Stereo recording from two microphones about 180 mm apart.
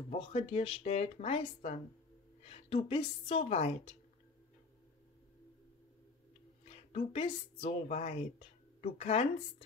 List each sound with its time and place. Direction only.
0.1 s a woman's voice: 30° left (ahead or behind)
6.9 s a woman's voice: 35° left (ahead or behind)